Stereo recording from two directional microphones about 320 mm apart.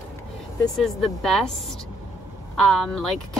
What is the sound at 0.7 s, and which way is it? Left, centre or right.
Speech, centre.